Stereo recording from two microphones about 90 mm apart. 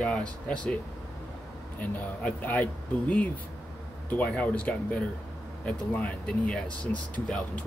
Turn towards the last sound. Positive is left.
turn(degrees=10)  # may be behind; listen again after turning